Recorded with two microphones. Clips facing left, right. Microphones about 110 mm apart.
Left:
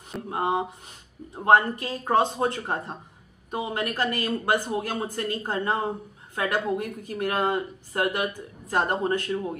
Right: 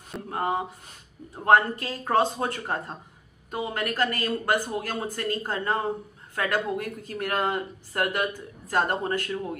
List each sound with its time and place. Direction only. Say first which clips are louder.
0.3 s speech: left 2 dB; 15° left (ahead or behind)